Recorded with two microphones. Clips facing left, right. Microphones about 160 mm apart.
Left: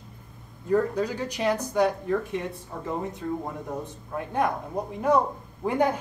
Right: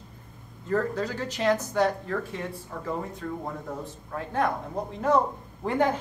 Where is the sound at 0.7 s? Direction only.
15° left (ahead or behind).